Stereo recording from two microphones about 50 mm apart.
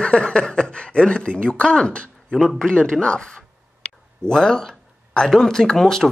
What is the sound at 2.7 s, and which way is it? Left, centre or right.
Speech, centre.